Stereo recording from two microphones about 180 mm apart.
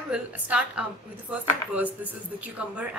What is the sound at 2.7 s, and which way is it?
Speech, 5° right (ahead or behind).